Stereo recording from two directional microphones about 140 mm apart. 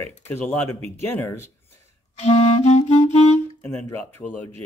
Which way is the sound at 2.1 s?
50° left (ahead or behind).